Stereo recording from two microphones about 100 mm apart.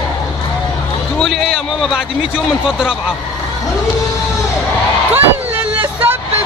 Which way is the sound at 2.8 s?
5° right (ahead or behind).